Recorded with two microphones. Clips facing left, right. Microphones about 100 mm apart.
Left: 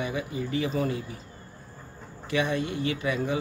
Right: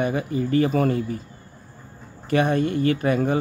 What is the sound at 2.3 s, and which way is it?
Speech, 50° right (ahead or behind).